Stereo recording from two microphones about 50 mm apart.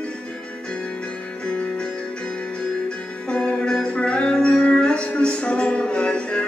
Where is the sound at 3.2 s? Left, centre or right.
Left.